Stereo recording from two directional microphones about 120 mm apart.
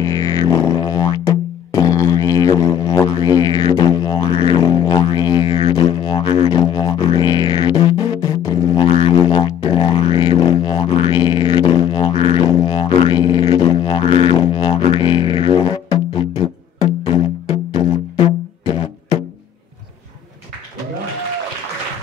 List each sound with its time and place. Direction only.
0.0 s music: 25° left (ahead or behind)
4.3 s music: 50° left (ahead or behind)
4.6 s music: 25° left (ahead or behind); by 6.5 s 50° left (ahead or behind)
6.5 s music: 35° left (ahead or behind)
8.4 s didgeridoo: 30° left (ahead or behind)
8.8 s music: 55° left (ahead or behind)
12.5 s music: 40° left (ahead or behind)